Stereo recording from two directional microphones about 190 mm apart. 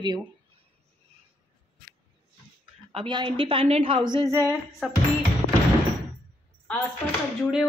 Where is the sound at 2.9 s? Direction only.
25° right (ahead or behind).